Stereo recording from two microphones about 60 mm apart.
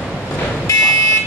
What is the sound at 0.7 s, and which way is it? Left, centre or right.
Car alarm, left.